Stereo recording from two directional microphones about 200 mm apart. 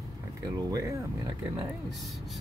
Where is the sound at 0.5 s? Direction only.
20° right (ahead or behind).